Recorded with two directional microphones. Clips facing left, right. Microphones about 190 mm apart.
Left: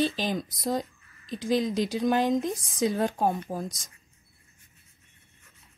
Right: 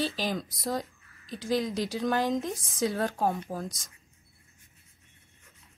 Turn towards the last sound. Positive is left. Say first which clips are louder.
# left 2 dB
turn(degrees=15)  # may be behind; listen again after turning